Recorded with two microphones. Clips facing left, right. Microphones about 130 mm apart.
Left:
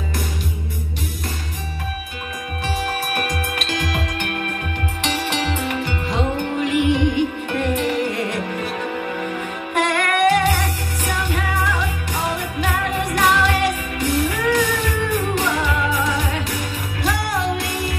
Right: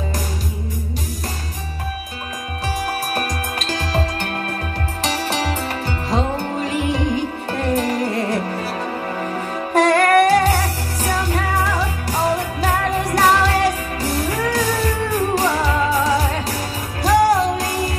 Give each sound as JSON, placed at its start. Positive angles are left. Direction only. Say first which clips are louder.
{"t": 3.1, "sound": "music", "louder": "even", "side_deg": -40}
{"t": 9.8, "sound": "music", "louder": "right 6 dB", "side_deg": -35}